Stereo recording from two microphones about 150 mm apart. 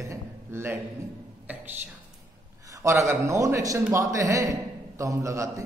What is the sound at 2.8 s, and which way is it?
A man's voice, 20° right (ahead or behind).